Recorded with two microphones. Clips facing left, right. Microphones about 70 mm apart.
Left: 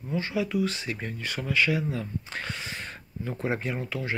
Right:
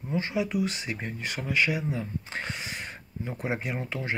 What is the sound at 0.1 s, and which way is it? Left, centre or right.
Speech, right.